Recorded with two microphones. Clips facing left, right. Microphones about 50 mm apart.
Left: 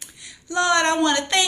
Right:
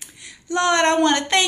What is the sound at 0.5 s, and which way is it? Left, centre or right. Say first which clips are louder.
Speech: right 2 dB; right.